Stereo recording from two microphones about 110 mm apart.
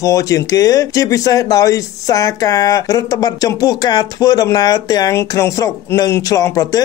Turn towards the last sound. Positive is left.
turn(degrees=35)  # may be behind; listen again after turning